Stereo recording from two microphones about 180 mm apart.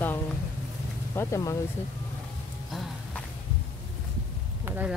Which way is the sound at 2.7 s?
Centre (ahead or behind).